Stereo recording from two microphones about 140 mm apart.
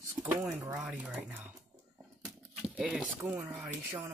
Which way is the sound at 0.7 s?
10° right (ahead or behind).